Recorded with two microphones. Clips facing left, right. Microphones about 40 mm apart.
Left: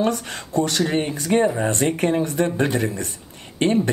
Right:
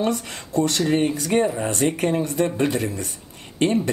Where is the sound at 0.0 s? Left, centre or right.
Left.